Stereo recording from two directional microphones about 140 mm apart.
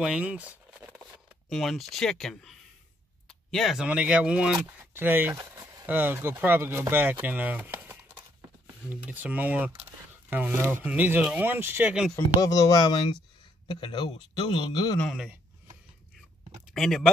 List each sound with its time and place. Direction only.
0.0 s speech: 10° right (ahead or behind)
1.5 s speech: centre (ahead or behind)
7.7 s typing: 15° right (ahead or behind)
9.0 s speech: 10° right (ahead or behind)
12.4 s a man's voice: 25° left (ahead or behind)
16.7 s speech: centre (ahead or behind)